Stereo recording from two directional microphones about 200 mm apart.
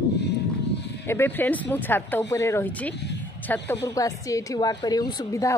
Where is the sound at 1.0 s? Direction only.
10° left (ahead or behind).